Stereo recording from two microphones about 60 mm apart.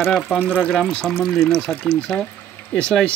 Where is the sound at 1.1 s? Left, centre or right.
Centre.